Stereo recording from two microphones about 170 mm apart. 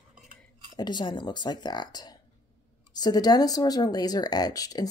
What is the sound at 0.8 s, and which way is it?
A woman's voice, 25° left (ahead or behind).